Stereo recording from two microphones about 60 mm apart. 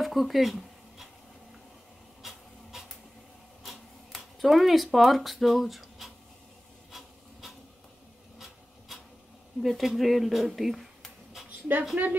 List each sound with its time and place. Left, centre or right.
0.0 s a sound: centre
2.2 s printer: centre
3.6 s a sound: centre
6.9 s filing: centre
8.4 s printer: centre
9.6 s speech: centre
12.0 s a woman's voice: right